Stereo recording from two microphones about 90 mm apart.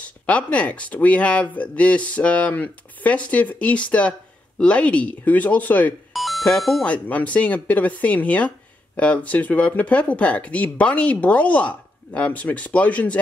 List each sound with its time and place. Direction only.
0.0 s speech: 15° left (ahead or behind)
6.1 s doorbell: centre (ahead or behind)
6.9 s speech: 15° left (ahead or behind)